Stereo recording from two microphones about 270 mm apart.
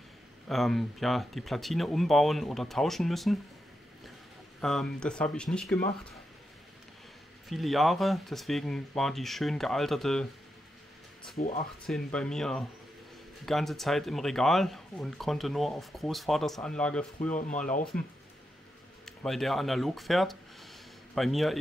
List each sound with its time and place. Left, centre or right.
0.5 s speech: centre
4.6 s speech: centre
7.4 s speech: centre
11.3 s speech: left
11.8 s speech: centre